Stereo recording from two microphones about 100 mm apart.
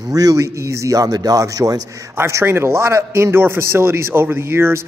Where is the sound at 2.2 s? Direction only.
25° right (ahead or behind).